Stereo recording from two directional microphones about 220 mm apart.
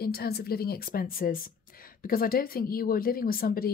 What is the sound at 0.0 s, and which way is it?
A woman's voice, 45° left (ahead or behind).